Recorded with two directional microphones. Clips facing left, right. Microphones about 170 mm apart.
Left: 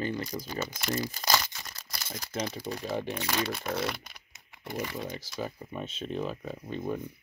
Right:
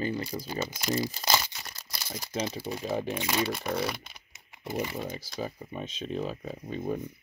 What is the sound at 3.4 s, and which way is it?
Speech, centre (ahead or behind).